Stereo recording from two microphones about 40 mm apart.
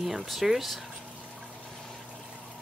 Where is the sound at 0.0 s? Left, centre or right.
Centre.